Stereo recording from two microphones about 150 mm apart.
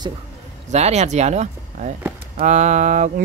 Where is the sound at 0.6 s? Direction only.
45° right (ahead or behind).